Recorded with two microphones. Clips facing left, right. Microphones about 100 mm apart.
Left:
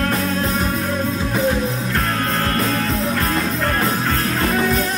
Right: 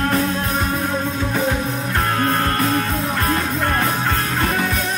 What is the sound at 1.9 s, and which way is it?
Music, 30° right (ahead or behind).